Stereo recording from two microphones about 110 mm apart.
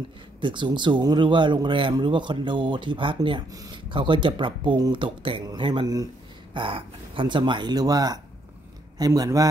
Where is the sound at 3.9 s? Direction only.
50° right (ahead or behind); by 9.4 s 30° right (ahead or behind).